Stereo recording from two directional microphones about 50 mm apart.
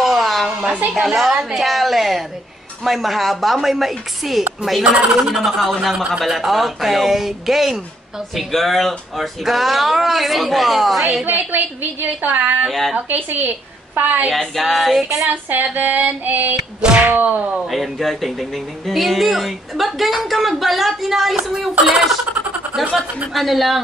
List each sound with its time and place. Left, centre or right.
0.0 s a sound: centre
1.0 s speech: centre
11.2 s a woman's voice: right
12.6 s speech: centre
12.9 s a woman's voice: right
14.3 s speech: centre
15.5 s a woman's voice: right
17.6 s speech: centre
23.3 s speech: centre